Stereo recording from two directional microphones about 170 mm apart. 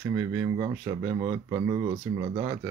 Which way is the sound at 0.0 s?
15° right (ahead or behind).